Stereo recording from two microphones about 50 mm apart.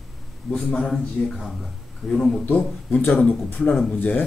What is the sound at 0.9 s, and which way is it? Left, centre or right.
Speech, centre.